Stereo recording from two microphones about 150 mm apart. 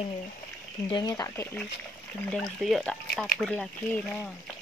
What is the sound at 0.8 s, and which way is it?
Speech, 30° left (ahead or behind).